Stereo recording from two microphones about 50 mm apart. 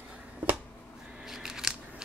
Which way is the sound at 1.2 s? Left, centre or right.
Centre.